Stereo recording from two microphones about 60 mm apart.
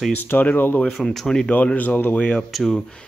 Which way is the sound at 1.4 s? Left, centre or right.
Left.